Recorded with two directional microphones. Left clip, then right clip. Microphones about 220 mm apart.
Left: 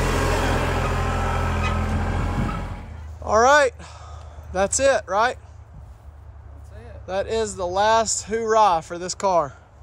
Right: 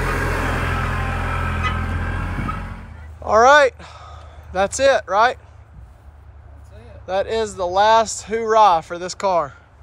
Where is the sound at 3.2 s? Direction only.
10° left (ahead or behind).